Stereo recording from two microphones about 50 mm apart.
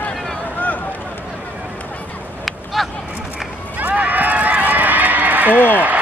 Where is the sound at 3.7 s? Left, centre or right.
Right.